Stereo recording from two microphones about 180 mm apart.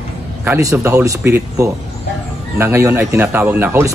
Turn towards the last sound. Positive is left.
turn(degrees=-10)  # may be behind; listen again after turning